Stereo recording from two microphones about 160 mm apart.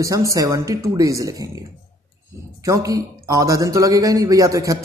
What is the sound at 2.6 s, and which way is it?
A man's voice, 20° right (ahead or behind).